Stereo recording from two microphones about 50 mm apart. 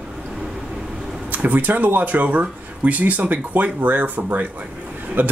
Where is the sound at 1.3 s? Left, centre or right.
Right.